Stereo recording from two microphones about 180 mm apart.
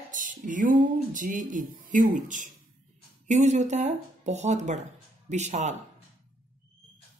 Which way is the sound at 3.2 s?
40° right (ahead or behind).